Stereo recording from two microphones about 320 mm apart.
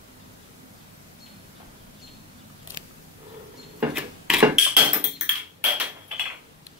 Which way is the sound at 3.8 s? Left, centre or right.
Centre.